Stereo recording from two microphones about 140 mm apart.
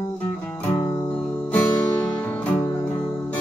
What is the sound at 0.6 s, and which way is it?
Music, 20° left (ahead or behind).